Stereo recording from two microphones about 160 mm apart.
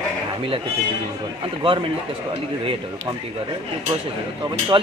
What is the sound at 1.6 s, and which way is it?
Speech, 35° right (ahead or behind).